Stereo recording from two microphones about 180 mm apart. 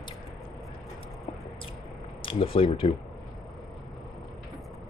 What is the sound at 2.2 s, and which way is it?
Speech, 30° left (ahead or behind).